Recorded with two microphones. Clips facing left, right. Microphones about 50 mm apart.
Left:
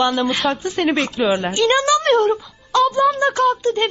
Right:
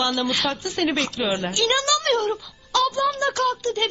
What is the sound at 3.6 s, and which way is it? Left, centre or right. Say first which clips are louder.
Speech: left 5 dB; left.